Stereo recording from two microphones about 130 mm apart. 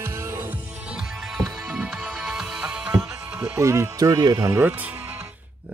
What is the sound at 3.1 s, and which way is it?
Speech, 15° right (ahead or behind).